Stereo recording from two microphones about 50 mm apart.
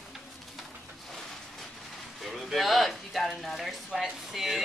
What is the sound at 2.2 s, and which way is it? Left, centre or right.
Speech, centre.